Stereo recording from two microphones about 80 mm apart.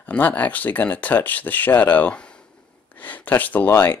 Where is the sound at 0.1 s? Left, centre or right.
Centre.